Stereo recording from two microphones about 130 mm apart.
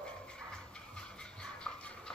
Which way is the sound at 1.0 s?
5° left (ahead or behind).